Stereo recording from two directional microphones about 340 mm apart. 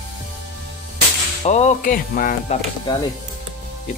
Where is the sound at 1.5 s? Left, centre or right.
Centre.